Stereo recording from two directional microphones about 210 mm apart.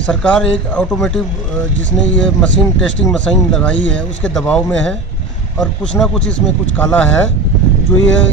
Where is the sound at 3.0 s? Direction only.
5° left (ahead or behind).